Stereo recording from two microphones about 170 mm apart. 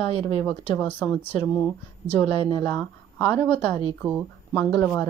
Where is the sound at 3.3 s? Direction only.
30° left (ahead or behind).